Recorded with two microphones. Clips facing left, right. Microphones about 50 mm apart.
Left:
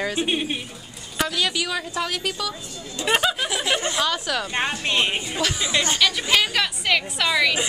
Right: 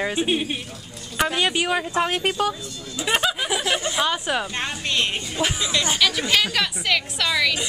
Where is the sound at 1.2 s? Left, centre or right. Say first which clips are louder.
Right 2 dB; right.